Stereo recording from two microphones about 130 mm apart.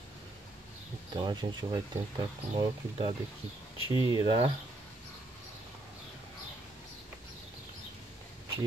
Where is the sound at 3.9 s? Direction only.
35° right (ahead or behind).